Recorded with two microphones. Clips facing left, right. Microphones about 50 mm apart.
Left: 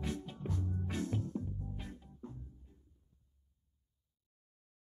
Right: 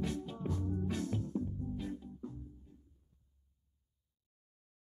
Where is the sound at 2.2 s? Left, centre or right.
Left.